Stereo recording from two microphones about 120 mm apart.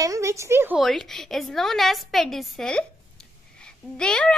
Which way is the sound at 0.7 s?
Centre (ahead or behind).